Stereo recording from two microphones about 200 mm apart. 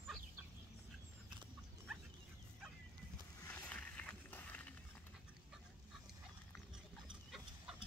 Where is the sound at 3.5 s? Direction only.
5° left (ahead or behind).